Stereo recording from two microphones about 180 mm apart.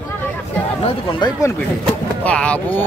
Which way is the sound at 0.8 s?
25° left (ahead or behind).